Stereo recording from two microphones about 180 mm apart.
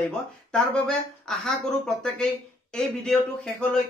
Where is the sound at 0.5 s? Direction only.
5° left (ahead or behind).